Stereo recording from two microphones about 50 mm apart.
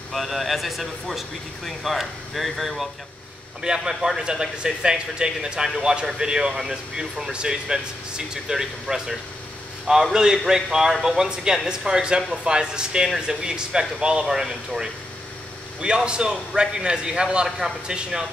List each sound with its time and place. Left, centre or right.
0.1 s speech: centre
3.6 s a man's voice: centre
10.1 s a man's voice: centre